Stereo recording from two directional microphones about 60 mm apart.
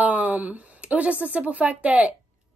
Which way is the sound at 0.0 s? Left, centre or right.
Right.